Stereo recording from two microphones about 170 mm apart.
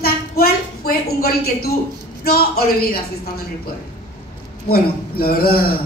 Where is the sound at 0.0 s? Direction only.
65° left (ahead or behind).